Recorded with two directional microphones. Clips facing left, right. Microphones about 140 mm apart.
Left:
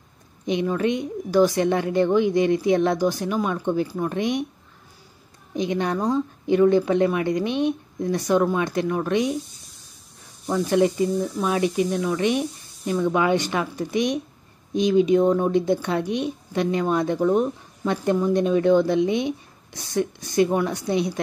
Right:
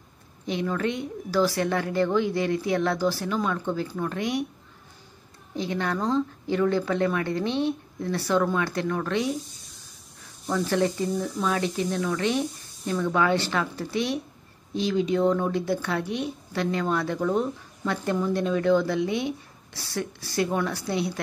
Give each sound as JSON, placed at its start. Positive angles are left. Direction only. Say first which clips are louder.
{"t": 0.5, "sound": "speech", "louder": "left 5 dB", "side_deg": 20}
{"t": 5.5, "sound": "speech", "louder": "left 4 dB", "side_deg": 20}
{"t": 10.4, "sound": "speech", "louder": "left 4 dB", "side_deg": 15}